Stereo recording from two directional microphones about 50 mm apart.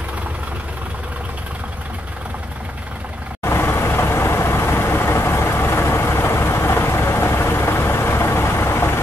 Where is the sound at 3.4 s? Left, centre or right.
Left.